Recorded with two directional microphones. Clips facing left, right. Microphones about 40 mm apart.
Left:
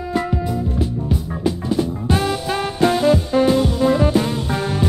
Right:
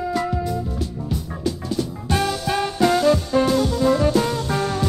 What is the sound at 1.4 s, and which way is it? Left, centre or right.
Music, left.